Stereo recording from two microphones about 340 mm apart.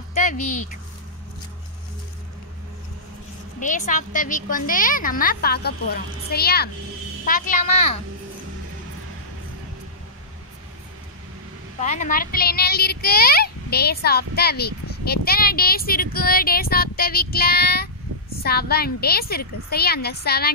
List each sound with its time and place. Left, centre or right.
0.1 s a sound: left
3.5 s speech: left
11.8 s speech: left